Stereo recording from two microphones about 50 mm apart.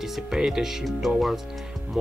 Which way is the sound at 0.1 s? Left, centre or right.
Centre.